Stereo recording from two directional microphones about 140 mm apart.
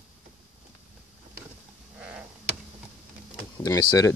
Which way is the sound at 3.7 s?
20° left (ahead or behind).